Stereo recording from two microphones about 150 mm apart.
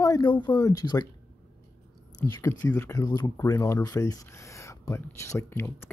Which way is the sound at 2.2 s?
20° left (ahead or behind).